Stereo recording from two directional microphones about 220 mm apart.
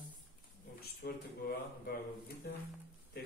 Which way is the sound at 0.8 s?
45° left (ahead or behind).